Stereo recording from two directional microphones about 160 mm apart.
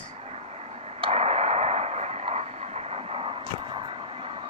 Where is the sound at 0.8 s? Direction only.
35° right (ahead or behind).